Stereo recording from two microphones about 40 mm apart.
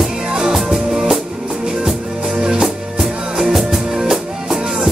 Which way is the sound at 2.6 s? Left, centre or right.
Centre.